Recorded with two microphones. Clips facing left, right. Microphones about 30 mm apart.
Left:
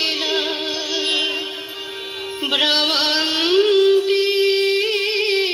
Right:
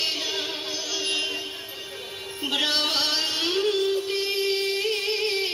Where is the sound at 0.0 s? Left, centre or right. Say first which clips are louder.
Left 7 dB; left.